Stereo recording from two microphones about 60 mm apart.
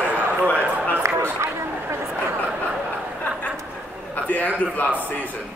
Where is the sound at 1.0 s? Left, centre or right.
Right.